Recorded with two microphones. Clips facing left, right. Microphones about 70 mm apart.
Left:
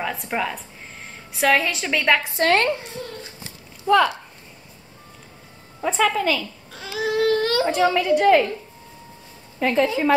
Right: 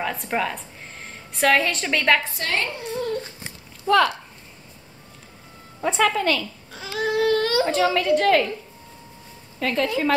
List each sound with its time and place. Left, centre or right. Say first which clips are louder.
0.0 s a woman's voice: even; centre
2.4 s speech: left 8 dB; left
3.8 s speech: left 1 dB; centre
5.8 s speech: even; centre
9.6 s a woman's voice: left 3 dB; centre